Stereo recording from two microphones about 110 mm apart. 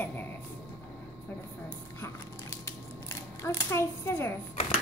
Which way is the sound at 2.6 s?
25° left (ahead or behind).